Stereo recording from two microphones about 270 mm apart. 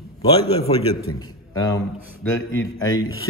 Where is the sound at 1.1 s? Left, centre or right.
Centre.